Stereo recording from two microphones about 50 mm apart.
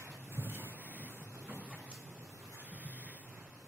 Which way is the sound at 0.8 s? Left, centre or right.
Right.